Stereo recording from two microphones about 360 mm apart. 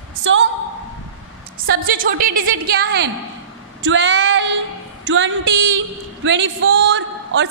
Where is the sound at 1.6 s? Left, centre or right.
Right.